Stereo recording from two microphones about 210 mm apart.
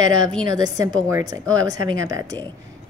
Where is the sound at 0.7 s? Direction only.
15° right (ahead or behind).